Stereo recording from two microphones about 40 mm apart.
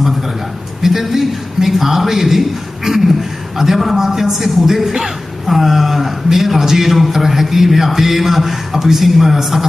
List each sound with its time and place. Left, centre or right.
0.8 s a man's voice: centre